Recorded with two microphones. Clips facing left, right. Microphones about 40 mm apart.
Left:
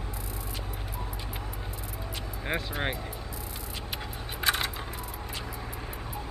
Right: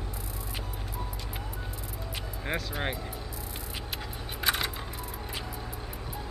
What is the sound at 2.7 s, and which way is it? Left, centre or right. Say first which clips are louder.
Speech: left 1 dB; centre.